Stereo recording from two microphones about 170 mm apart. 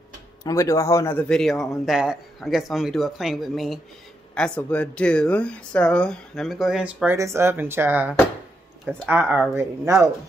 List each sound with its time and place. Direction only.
0.4 s a man's voice: 20° left (ahead or behind); by 10.1 s 15° right (ahead or behind)